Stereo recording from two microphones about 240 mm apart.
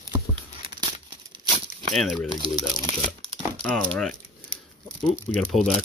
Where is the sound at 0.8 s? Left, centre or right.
Right.